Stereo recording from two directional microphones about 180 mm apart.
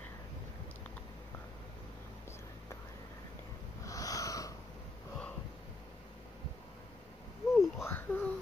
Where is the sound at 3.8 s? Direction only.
20° left (ahead or behind).